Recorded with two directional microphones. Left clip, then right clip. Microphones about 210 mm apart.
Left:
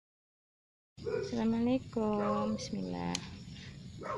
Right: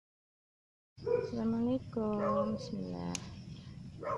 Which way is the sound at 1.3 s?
15° left (ahead or behind).